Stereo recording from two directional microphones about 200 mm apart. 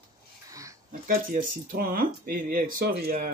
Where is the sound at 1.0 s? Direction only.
45° right (ahead or behind).